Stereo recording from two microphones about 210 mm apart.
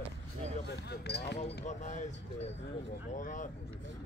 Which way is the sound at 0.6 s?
55° left (ahead or behind).